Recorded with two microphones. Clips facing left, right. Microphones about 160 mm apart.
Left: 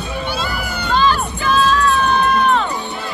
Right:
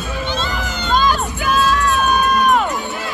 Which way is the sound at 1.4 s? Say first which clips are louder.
Left 2 dB; 10° right (ahead or behind).